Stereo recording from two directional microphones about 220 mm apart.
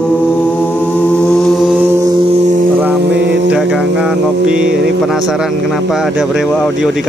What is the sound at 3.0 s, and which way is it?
Music, 50° right (ahead or behind).